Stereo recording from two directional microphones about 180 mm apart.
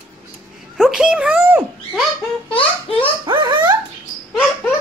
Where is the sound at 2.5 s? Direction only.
30° left (ahead or behind).